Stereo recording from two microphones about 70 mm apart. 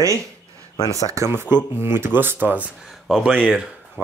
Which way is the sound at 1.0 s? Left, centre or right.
Right.